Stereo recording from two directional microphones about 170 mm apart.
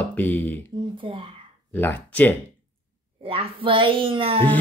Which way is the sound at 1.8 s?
10° left (ahead or behind).